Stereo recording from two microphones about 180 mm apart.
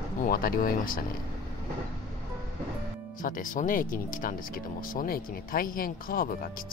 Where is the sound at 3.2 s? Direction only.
50° left (ahead or behind).